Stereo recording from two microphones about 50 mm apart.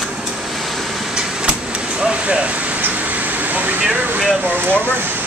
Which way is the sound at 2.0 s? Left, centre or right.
Right.